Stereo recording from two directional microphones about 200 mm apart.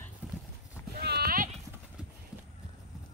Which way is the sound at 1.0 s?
55° right (ahead or behind).